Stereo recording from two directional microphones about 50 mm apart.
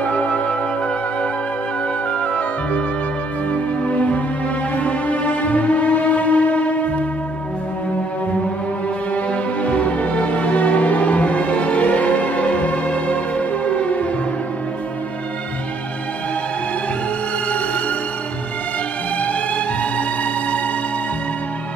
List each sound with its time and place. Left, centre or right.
0.0 s music: left
2.1 s music: left
3.8 s music: left
9.1 s music: left
17.5 s music: left
19.2 s music: left